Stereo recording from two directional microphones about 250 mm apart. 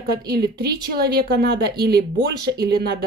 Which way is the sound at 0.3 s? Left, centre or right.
Right.